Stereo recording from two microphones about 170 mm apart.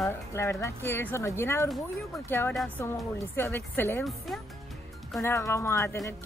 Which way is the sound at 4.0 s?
Centre (ahead or behind).